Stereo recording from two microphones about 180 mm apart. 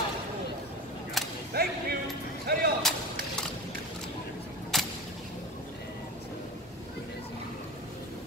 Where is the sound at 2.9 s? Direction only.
Centre (ahead or behind).